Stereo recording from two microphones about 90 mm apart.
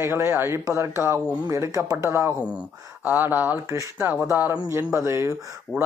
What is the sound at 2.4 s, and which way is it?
Speech, 15° right (ahead or behind).